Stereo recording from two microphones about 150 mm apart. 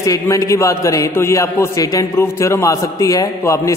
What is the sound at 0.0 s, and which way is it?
A man's voice, 20° left (ahead or behind).